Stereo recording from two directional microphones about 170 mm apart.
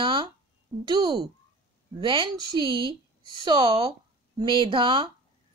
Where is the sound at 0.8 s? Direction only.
25° right (ahead or behind).